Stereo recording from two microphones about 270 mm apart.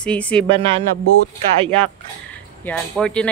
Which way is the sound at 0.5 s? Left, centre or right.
Centre.